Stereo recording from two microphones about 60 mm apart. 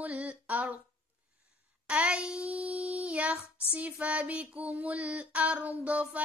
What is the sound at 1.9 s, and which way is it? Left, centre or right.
Child singing, centre.